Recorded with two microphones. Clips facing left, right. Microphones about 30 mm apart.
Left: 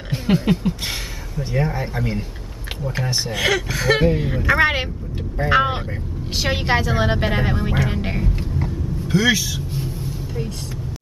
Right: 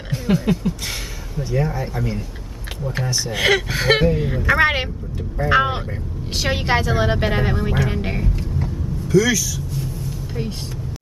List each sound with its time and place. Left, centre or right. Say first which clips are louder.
0.1 s a sound: left 1 dB; left
1.4 s speech: even; left
3.3 s speech: right 3 dB; centre
3.7 s speech: right 1 dB; right
4.0 s a woman's voice: even; centre
9.0 s speech: right 1 dB; left